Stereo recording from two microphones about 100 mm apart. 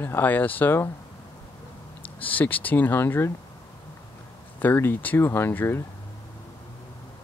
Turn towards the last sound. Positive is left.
turn(degrees=20)  # may be behind; listen again after turning